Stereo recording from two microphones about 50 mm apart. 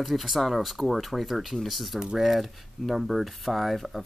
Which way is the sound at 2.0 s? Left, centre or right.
Centre.